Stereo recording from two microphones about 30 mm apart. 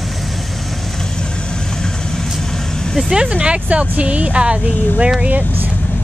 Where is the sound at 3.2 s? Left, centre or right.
Right.